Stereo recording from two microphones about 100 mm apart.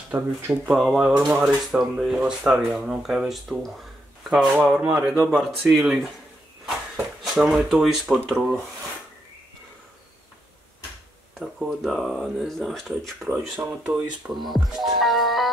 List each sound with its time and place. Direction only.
0.1 s speech: 15° right (ahead or behind)
0.7 s speech: 5° right (ahead or behind)
6.6 s a sound: 5° right (ahead or behind)
8.3 s speech: centre (ahead or behind)
11.3 s speech: centre (ahead or behind)
14.3 s speech: centre (ahead or behind)
15.0 s music: centre (ahead or behind)